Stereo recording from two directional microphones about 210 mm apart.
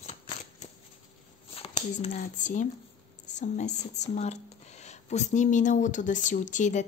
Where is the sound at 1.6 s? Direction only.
30° left (ahead or behind).